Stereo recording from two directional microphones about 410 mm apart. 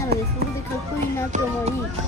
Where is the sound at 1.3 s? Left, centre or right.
Centre.